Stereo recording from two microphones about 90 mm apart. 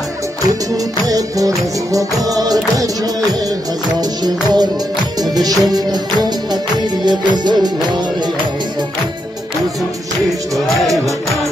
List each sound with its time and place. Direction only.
1.0 s music: 40° right (ahead or behind)